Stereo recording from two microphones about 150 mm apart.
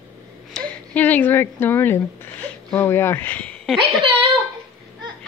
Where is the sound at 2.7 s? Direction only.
15° left (ahead or behind).